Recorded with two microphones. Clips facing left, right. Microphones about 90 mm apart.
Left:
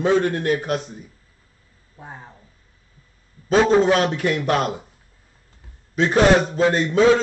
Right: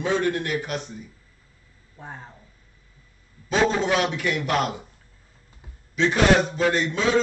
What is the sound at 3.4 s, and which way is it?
Speech, 40° left (ahead or behind).